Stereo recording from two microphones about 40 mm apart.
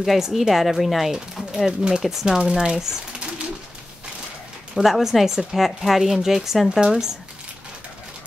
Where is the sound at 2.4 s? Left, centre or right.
Right.